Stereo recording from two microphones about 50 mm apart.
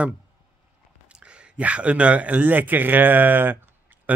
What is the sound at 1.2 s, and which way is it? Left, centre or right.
Speech, right.